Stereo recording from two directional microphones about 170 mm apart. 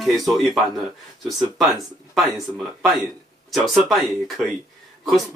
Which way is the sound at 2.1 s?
Centre (ahead or behind).